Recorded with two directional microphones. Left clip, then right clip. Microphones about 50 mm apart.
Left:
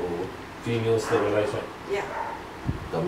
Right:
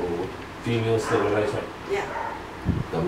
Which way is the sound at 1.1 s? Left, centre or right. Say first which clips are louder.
Right 2 dB; centre.